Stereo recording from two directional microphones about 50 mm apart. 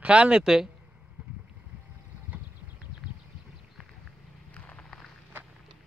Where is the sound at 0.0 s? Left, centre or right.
Right.